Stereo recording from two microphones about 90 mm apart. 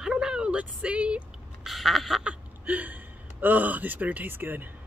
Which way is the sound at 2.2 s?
20° right (ahead or behind).